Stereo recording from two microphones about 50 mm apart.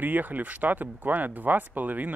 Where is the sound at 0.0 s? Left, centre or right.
Right.